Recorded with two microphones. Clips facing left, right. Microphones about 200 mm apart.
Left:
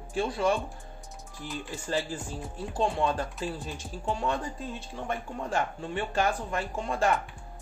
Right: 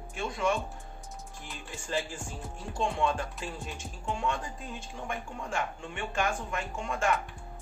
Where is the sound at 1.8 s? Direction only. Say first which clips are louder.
Left 2 dB; 35° left (ahead or behind).